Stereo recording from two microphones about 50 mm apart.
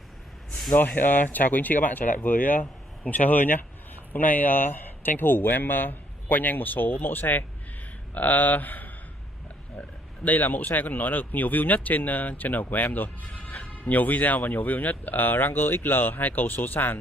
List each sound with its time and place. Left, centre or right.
0.7 s speech: left